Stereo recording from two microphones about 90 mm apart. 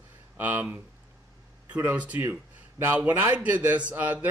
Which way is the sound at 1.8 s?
15° right (ahead or behind).